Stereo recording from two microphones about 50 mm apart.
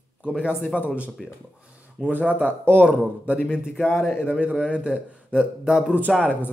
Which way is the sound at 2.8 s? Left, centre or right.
Right.